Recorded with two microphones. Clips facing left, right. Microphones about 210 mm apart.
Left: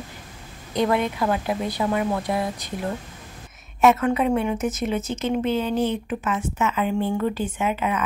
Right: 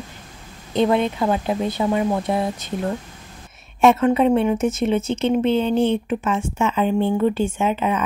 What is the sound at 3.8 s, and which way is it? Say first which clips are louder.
A woman's voice: right 3 dB; 30° right (ahead or behind).